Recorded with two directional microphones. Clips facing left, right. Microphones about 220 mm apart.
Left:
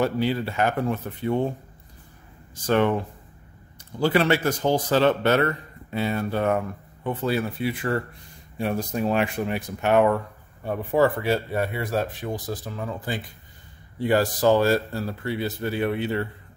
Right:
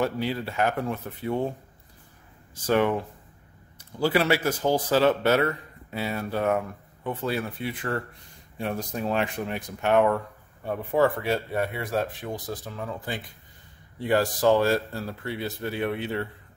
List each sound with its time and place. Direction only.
0.0 s speech: centre (ahead or behind)
2.6 s speech: 10° right (ahead or behind)
4.0 s speech: 5° right (ahead or behind)